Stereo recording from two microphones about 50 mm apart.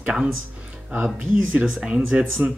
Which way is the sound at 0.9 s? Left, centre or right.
Right.